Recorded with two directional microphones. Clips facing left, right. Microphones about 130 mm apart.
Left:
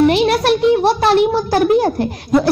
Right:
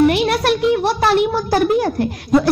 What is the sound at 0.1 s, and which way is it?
A woman's voice, 25° left (ahead or behind).